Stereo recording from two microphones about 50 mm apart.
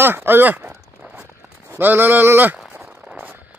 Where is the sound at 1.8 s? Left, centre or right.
Right.